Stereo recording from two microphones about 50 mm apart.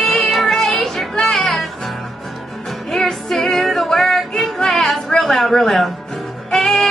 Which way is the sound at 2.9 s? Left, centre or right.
Centre.